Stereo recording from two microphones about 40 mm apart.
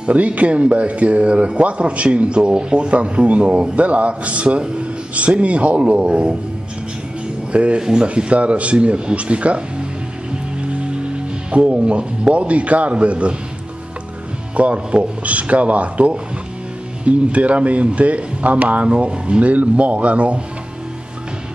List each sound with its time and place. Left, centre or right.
0.0 s speech: right
7.5 s speech: right
10.6 s music: right
11.5 s speech: right
14.6 s speech: right
18.9 s speech: right